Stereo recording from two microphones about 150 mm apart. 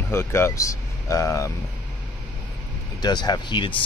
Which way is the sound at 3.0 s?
30° left (ahead or behind).